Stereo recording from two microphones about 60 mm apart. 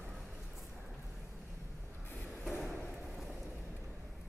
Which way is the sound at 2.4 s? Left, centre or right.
Centre.